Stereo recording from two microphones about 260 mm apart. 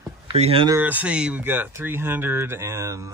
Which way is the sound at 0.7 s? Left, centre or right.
Centre.